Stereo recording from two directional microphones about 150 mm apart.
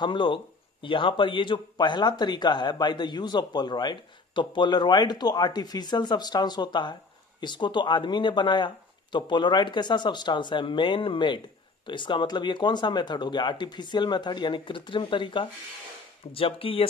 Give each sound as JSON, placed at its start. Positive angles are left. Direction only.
{"t": 0.0, "sound": "speech", "side_deg": 30}